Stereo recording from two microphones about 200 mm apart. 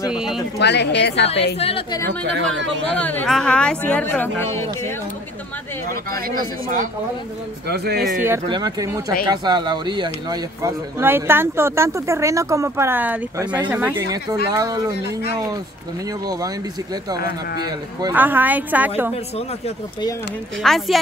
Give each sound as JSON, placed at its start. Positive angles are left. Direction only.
{"t": 0.1, "sound": "speech", "side_deg": -5}
{"t": 0.6, "sound": "a woman's voice", "side_deg": 55}
{"t": 1.6, "sound": "a woman's voice", "side_deg": 30}
{"t": 2.0, "sound": "speech", "side_deg": -65}
{"t": 2.9, "sound": "speech", "side_deg": 10}
{"t": 6.3, "sound": "speech", "side_deg": -45}
{"t": 8.5, "sound": "speech", "side_deg": -20}
{"t": 17.6, "sound": "speech", "side_deg": -20}
{"t": 18.1, "sound": "speech", "side_deg": -10}
{"t": 20.6, "sound": "speech", "side_deg": 0}